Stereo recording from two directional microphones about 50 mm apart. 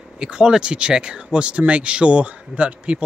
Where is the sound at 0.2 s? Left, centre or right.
Centre.